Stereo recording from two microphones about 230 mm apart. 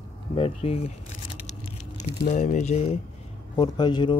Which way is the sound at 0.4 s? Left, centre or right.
Left.